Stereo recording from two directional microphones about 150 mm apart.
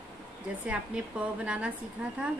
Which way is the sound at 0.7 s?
5° right (ahead or behind).